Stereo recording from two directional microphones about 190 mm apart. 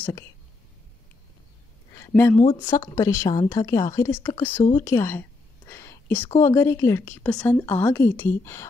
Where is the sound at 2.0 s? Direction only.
10° left (ahead or behind).